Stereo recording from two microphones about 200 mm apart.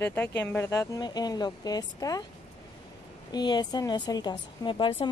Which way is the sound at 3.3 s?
20° left (ahead or behind).